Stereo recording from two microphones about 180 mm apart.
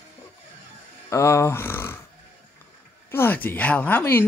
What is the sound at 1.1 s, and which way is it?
Speech, 15° left (ahead or behind).